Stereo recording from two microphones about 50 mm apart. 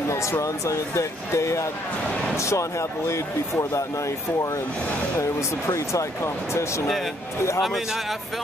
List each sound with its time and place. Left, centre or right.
0.1 s speech: left
5.7 s speech: left
7.6 s speech: centre